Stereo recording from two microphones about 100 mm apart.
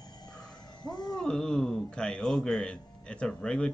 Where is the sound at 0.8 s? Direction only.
45° left (ahead or behind).